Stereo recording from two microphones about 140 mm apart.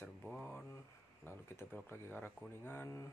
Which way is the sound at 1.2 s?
15° left (ahead or behind).